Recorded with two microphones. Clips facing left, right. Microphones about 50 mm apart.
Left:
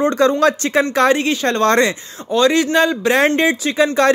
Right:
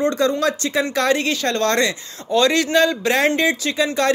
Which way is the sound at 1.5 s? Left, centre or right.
Left.